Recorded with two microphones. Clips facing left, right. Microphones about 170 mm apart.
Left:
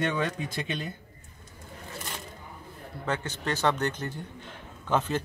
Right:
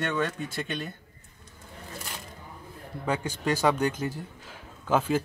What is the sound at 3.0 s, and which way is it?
Speech, 10° right (ahead or behind).